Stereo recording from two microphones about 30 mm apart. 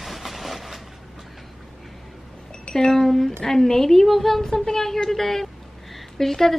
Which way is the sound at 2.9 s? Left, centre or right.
Centre.